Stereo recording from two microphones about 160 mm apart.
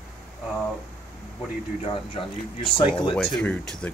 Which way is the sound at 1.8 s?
35° left (ahead or behind).